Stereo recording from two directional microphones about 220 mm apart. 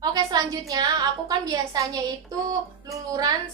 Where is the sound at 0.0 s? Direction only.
15° right (ahead or behind).